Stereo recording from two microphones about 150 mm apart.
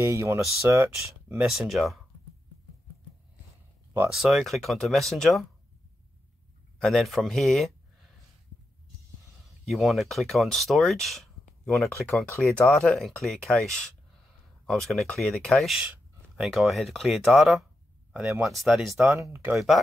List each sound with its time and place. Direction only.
0.0 s speech: 20° right (ahead or behind); by 2.0 s centre (ahead or behind)
4.1 s speech: centre (ahead or behind)
6.8 s speech: centre (ahead or behind)
9.7 s speech: centre (ahead or behind)
19.5 s speech: centre (ahead or behind)